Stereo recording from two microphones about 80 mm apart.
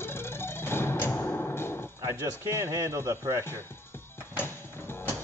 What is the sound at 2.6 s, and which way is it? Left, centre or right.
Speech, right.